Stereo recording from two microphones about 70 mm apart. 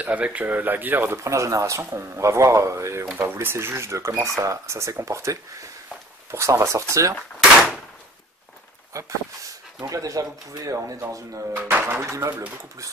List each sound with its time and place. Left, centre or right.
0.0 s speech: right
1.2 s speech: right
7.3 s gunshot: centre
8.9 s speech: right
11.6 s speech: right